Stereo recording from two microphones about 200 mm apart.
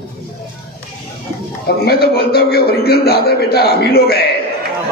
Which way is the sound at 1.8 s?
50° left (ahead or behind).